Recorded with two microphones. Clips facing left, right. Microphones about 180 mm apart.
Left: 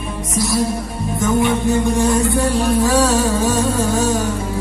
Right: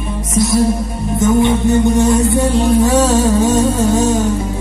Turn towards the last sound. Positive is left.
turn(degrees=-20)  # may be behind; listen again after turning